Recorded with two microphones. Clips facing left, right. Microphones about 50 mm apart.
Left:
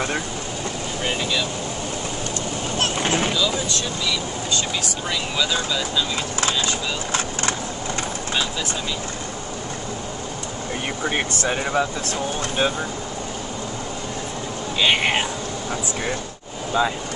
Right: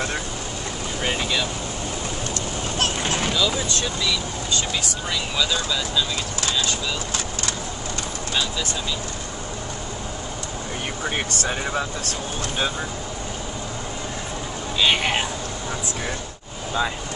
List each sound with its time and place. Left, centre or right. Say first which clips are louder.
2.8 s boat: left 2 dB; centre
5.4 s speech: left 1 dB; centre
11.1 s speech: left 3 dB; centre
14.8 s speech: left 1 dB; centre
16.8 s speech: left 3 dB; centre